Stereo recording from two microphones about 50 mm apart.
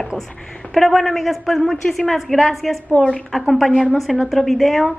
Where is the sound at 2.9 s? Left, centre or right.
Left.